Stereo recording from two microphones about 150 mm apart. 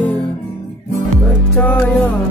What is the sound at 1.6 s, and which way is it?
Music, 10° left (ahead or behind).